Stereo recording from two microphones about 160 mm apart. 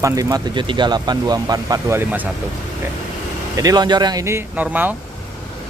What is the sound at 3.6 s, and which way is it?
Speech, 25° right (ahead or behind).